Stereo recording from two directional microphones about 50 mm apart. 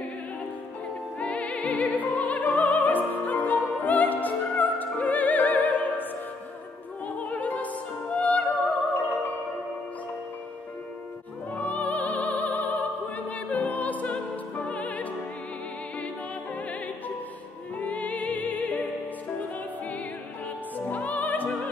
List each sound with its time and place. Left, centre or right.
1.2 s music: left
7.2 s music: left
11.5 s music: left
16.5 s opera: left
17.7 s music: left
20.7 s music: left